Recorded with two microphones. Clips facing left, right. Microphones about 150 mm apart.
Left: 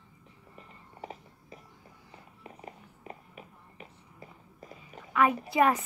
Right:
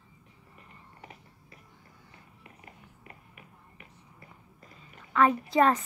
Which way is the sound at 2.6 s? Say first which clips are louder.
Left 7 dB; 25° left (ahead or behind).